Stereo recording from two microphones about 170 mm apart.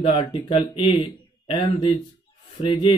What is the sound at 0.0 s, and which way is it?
Speech, 35° left (ahead or behind).